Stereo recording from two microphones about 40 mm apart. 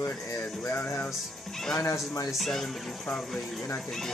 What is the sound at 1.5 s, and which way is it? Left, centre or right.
Music, centre.